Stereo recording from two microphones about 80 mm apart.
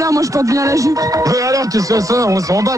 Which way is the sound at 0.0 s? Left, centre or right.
Right.